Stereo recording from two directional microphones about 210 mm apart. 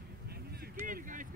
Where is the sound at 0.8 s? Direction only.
40° right (ahead or behind).